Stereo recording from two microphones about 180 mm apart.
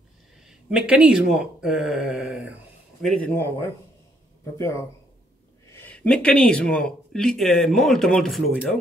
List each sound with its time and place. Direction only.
0.5 s speech: 5° right (ahead or behind)
3.1 s speech: 10° left (ahead or behind)